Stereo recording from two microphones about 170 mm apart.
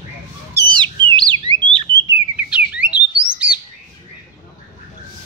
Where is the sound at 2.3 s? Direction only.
5° right (ahead or behind).